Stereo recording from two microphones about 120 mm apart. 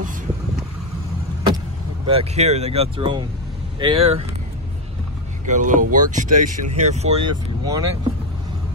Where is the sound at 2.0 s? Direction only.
55° right (ahead or behind).